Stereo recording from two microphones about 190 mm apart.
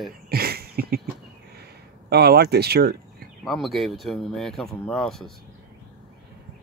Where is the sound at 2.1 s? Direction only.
55° right (ahead or behind).